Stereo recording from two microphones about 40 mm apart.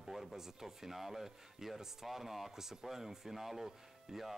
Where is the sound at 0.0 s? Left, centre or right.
Centre.